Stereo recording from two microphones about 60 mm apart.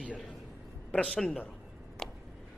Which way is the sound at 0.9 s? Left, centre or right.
Centre.